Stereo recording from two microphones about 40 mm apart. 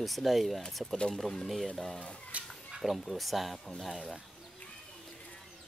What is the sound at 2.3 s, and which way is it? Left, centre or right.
Chicken, right.